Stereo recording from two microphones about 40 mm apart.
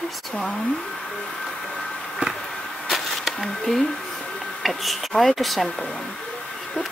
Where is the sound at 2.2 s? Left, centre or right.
Right.